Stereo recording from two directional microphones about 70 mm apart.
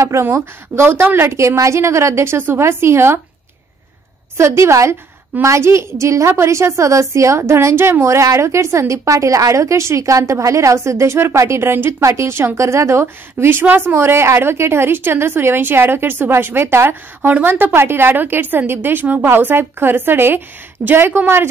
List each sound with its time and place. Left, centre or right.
0.0 s speech: right
4.4 s a woman's voice: right